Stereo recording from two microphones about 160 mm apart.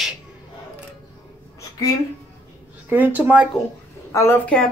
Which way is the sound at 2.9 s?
10° right (ahead or behind).